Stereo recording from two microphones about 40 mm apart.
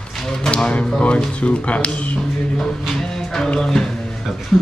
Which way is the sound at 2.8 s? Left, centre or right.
Centre.